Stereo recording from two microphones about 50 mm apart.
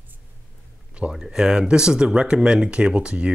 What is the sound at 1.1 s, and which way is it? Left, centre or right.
Speech, centre.